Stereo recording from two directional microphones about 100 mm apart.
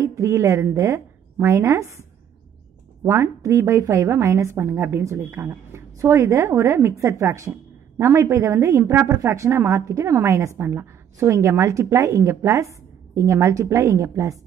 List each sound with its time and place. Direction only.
0.0 s a woman's voice: 30° right (ahead or behind)